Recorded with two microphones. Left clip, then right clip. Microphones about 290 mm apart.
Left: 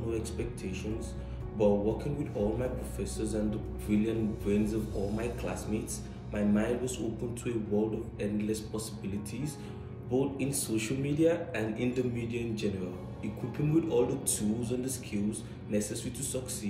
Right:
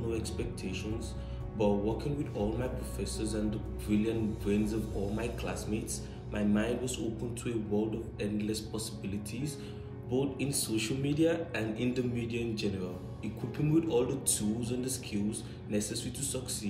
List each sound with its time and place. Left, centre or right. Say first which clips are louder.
0.1 s a man's voice: left 1 dB; centre
8.2 s a man's voice: left 2 dB; centre
10.1 s a man's voice: left 2 dB; centre
14.0 s a man's voice: left 1 dB; centre
14.7 s a man's voice: left 1 dB; centre